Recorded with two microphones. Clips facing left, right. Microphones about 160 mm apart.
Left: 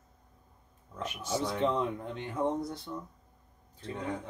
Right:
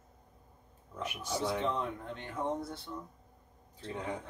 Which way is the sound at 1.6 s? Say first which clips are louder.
Left 5 dB; 15° left (ahead or behind).